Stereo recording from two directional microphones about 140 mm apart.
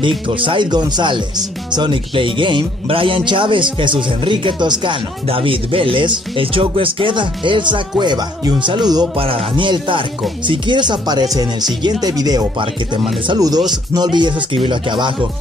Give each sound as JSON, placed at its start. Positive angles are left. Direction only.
{"t": 0.3, "sound": "speech", "side_deg": -35}